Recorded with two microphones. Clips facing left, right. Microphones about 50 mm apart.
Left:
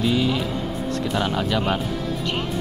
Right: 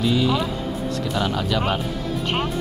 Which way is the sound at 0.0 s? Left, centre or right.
Centre.